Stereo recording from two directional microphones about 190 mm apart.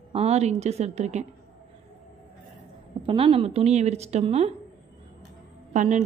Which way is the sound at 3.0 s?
30° right (ahead or behind).